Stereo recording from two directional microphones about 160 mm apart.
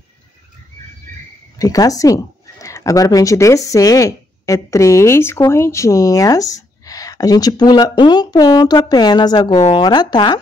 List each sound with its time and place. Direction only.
1.6 s speech: 20° left (ahead or behind)